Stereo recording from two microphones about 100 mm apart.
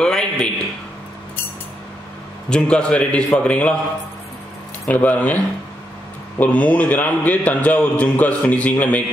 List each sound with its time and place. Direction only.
0.0 s a sound: 5° left (ahead or behind)
2.5 s a man's voice: 10° left (ahead or behind)
4.8 s a man's voice: 15° left (ahead or behind)
6.4 s a man's voice: 15° left (ahead or behind)